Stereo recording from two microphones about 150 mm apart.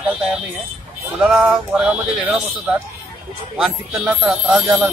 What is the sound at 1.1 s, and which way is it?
Speech, 5° right (ahead or behind).